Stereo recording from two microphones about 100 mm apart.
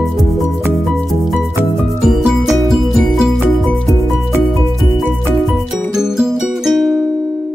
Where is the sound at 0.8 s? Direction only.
Centre (ahead or behind).